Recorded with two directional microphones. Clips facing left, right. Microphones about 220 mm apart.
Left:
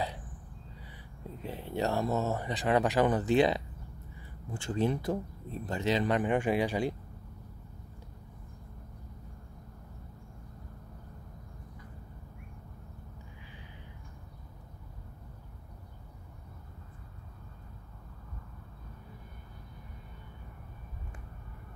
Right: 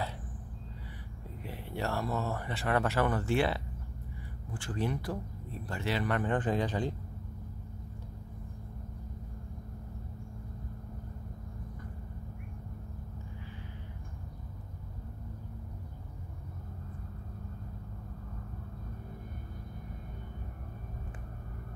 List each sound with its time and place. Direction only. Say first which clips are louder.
1.4 s speech: left 4 dB; 20° left (ahead or behind)